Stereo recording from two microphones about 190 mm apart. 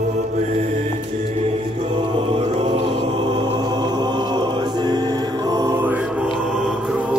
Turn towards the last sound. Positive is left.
turn(degrees=0)  # may be behind; listen again after turning